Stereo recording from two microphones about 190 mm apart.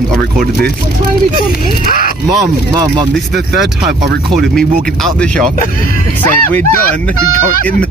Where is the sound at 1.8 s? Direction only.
45° left (ahead or behind).